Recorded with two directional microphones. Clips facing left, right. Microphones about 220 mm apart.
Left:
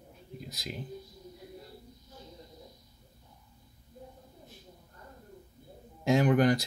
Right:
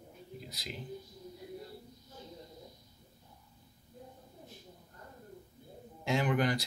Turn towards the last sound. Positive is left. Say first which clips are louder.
# left 6 dB
turn(degrees=45)  # may be behind; listen again after turning